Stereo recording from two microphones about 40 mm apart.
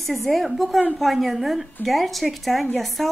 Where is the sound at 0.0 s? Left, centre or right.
Centre.